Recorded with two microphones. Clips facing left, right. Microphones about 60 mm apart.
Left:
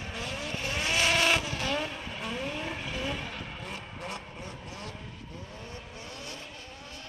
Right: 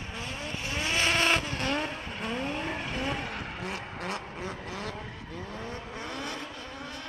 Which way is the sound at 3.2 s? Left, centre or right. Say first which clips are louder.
Right 3 dB; right.